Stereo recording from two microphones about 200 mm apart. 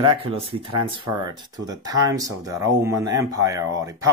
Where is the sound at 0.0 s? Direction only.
25° right (ahead or behind).